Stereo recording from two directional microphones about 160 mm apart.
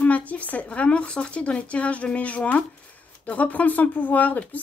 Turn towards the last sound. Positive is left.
turn(degrees=10)  # may be behind; listen again after turning